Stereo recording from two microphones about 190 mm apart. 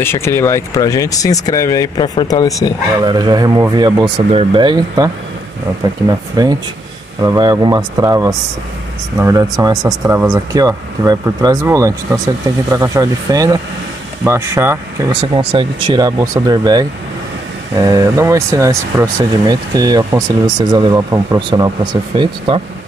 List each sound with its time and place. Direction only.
0.0 s speech: 15° left (ahead or behind)
3.0 s speech: 20° right (ahead or behind)